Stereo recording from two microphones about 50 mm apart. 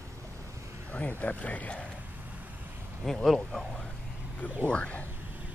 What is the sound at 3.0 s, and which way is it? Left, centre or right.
Speech, centre.